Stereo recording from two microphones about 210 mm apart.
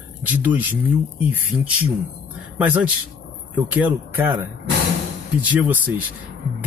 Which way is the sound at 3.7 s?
10° right (ahead or behind).